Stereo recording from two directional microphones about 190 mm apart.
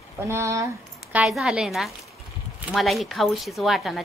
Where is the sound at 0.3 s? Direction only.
15° right (ahead or behind).